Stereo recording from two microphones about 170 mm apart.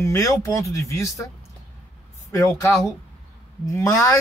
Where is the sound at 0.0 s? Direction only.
20° left (ahead or behind).